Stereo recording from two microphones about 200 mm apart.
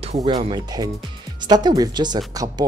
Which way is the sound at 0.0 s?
30° right (ahead or behind).